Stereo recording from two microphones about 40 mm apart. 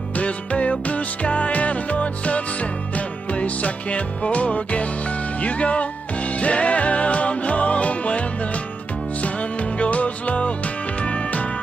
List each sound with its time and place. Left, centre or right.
0.1 s music: left